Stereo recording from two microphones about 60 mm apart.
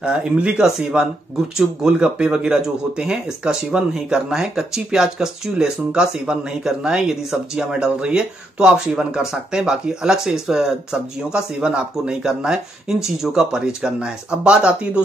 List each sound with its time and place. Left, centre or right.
0.0 s speech: centre